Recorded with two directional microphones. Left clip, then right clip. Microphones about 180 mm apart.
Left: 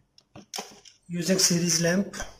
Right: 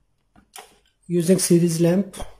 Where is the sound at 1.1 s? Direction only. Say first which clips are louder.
Right 6 dB; 25° right (ahead or behind).